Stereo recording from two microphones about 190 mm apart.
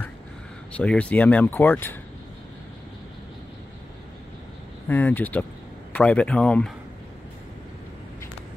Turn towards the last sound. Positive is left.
turn(degrees=5)  # may be behind; listen again after turning